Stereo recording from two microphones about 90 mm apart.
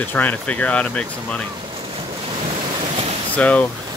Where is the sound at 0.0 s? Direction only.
20° left (ahead or behind).